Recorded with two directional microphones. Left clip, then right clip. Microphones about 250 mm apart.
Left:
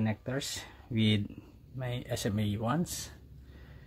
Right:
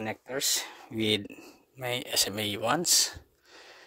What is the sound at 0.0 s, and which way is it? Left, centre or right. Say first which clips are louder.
Speech: right 4 dB; right.